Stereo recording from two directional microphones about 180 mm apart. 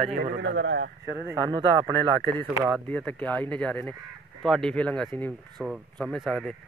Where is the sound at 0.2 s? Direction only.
85° right.